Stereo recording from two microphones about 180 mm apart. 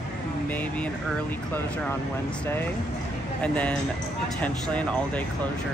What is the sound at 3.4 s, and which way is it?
Speech, 5° left (ahead or behind).